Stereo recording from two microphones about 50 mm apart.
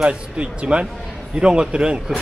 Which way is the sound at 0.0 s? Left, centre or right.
Right.